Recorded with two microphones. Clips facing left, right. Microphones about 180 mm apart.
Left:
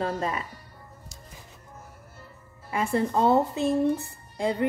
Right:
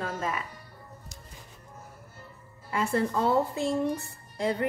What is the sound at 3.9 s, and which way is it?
Music, 15° left (ahead or behind).